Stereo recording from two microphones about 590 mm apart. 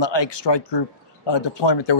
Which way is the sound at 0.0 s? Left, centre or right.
Left.